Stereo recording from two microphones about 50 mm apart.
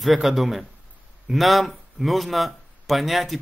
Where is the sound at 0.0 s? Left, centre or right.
Centre.